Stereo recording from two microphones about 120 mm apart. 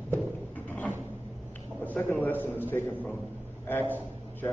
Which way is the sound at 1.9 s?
15° left (ahead or behind).